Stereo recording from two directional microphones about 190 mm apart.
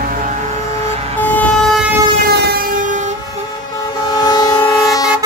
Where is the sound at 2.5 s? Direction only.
50° right (ahead or behind).